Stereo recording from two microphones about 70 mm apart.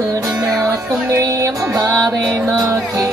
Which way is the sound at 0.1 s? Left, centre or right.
Right.